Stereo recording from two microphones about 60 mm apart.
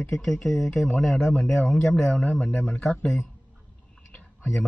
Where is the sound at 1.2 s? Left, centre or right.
Centre.